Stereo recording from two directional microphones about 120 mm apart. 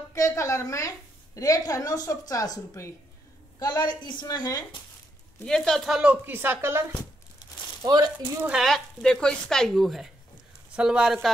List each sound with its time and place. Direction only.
0.1 s a woman's voice: 25° left (ahead or behind)
5.4 s a woman's voice: 5° left (ahead or behind); by 6.9 s 20° right (ahead or behind)
7.8 s speech: 35° right (ahead or behind)
8.4 s a woman's voice: 5° right (ahead or behind)